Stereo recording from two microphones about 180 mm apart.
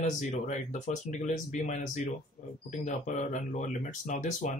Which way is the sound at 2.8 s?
40° left (ahead or behind).